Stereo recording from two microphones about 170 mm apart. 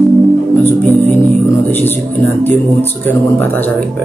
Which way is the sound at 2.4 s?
10° left (ahead or behind).